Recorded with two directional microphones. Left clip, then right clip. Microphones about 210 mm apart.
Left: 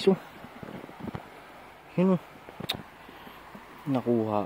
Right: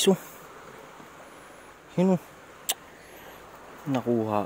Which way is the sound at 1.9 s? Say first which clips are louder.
Right 1 dB; 5° right (ahead or behind).